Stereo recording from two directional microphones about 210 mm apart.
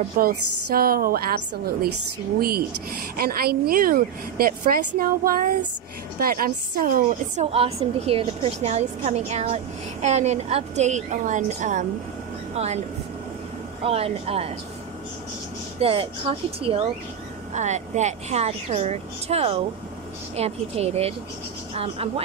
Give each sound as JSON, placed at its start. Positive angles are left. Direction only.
{"t": 0.2, "sound": "a woman's voice", "side_deg": -45}
{"t": 3.2, "sound": "a woman's voice", "side_deg": -45}
{"t": 7.5, "sound": "a woman's voice", "side_deg": -30}
{"t": 13.8, "sound": "a woman's voice", "side_deg": -30}
{"t": 15.8, "sound": "a woman's voice", "side_deg": -25}